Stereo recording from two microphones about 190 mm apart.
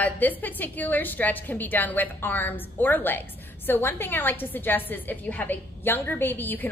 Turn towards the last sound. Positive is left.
turn(degrees=10)  # may be behind; listen again after turning